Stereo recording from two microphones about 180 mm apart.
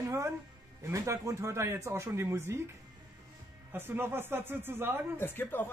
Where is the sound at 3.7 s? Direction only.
10° right (ahead or behind).